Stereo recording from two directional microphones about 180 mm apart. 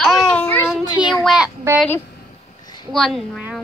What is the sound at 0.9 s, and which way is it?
Speech, 25° left (ahead or behind).